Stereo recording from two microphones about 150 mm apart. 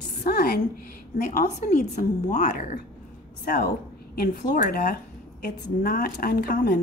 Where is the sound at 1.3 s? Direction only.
55° left (ahead or behind).